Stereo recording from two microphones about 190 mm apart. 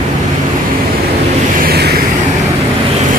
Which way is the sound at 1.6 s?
55° right (ahead or behind).